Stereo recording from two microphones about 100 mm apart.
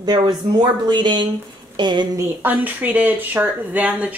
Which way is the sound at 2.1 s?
20° right (ahead or behind).